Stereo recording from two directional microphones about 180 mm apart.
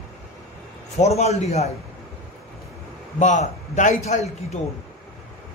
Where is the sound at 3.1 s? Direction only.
45° left (ahead or behind).